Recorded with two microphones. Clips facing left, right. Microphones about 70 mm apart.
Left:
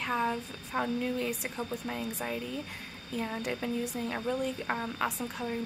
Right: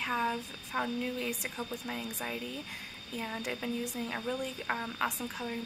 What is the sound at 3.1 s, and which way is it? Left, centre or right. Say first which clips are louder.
A woman's voice: left 3 dB; centre.